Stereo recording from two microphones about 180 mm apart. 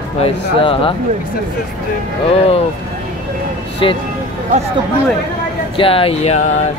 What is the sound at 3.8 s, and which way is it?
Speech, 30° left (ahead or behind).